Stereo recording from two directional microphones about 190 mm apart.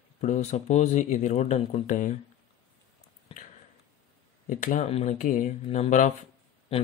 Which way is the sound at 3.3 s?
30° left (ahead or behind).